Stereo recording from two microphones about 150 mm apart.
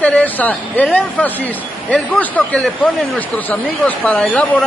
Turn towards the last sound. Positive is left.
turn(degrees=10)  # may be behind; listen again after turning